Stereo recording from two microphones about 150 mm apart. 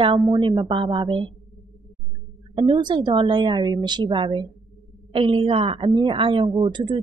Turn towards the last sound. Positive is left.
turn(degrees=-30)  # may be behind; listen again after turning